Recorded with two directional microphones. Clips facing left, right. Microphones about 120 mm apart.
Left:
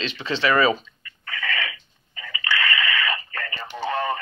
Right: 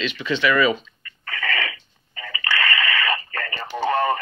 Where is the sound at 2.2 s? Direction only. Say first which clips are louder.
Right 1 dB; 50° right (ahead or behind).